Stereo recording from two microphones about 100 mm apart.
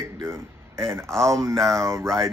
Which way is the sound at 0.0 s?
30° right (ahead or behind).